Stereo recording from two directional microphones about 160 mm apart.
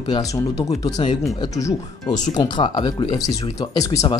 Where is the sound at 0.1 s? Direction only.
20° left (ahead or behind).